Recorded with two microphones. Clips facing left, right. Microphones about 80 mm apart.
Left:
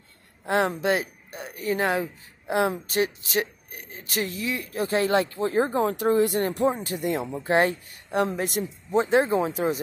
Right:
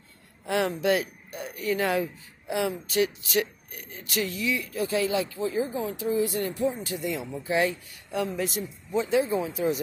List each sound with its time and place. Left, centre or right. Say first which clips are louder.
0.5 s speech: left 1 dB; left
6.7 s speech: left 4 dB; left